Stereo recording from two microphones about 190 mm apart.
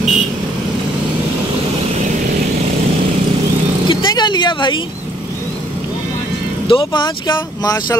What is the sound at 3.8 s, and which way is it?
Speech, 25° left (ahead or behind).